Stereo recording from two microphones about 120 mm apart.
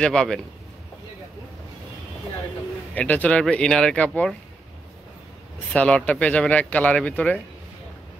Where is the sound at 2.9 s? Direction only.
15° left (ahead or behind).